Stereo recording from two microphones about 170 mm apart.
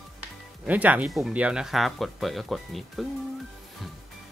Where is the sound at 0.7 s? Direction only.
10° right (ahead or behind).